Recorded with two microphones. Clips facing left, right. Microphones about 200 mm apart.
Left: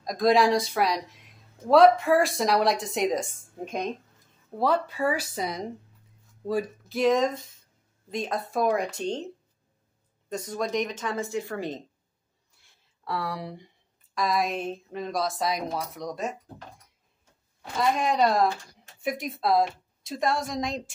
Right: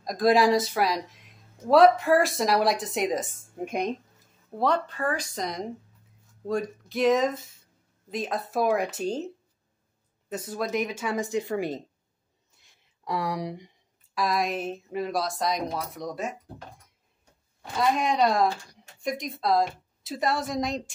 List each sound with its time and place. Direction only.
0.0 s speech: centre (ahead or behind)
4.6 s speech: 5° left (ahead or behind)
10.3 s a woman's voice: 5° right (ahead or behind)
12.5 s a sound: 15° right (ahead or behind)
14.1 s speech: centre (ahead or behind)
17.7 s speech: centre (ahead or behind)